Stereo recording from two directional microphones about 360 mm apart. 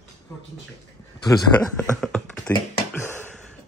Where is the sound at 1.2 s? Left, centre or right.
Centre.